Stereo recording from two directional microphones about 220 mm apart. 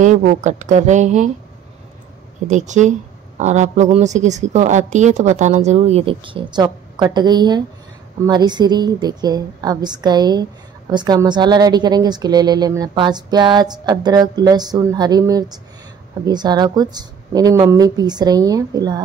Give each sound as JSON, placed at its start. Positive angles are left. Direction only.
{"t": 0.0, "sound": "a woman's voice", "side_deg": -35}
{"t": 2.4, "sound": "a woman's voice", "side_deg": -35}